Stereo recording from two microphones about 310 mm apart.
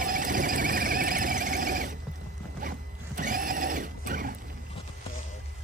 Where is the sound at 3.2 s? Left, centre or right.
Right.